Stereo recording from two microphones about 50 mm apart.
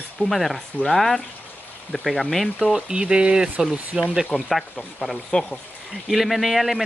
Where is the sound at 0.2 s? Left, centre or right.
Centre.